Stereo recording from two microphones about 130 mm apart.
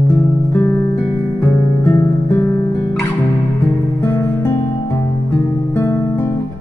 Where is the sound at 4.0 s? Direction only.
20° left (ahead or behind).